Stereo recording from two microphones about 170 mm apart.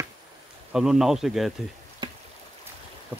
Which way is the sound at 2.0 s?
25° right (ahead or behind).